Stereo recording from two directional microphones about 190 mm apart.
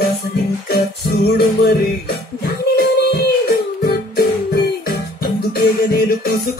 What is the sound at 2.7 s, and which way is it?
Music, 55° left (ahead or behind).